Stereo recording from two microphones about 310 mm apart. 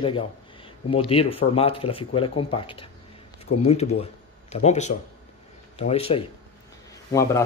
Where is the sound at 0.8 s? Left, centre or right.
Centre.